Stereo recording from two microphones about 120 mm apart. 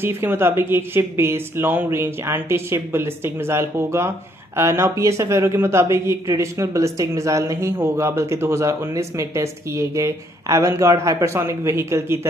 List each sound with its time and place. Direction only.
0.0 s speech: 20° right (ahead or behind)